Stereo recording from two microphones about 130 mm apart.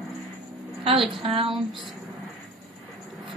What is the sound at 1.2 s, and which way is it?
Speech, 45° right (ahead or behind).